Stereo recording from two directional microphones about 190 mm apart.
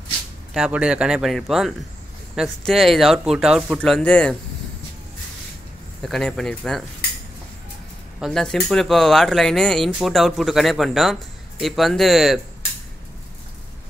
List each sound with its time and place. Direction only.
0.5 s speech: 5° right (ahead or behind)
6.0 s speech: centre (ahead or behind)
8.2 s speech: centre (ahead or behind)